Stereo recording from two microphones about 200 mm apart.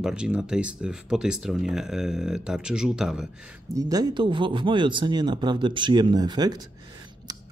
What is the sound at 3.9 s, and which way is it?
Speech, 20° right (ahead or behind).